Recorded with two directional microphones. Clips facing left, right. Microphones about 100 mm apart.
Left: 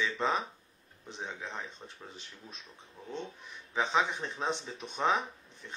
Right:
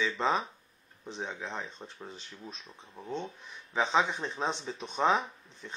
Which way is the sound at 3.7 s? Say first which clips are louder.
Right 2 dB; 25° right (ahead or behind).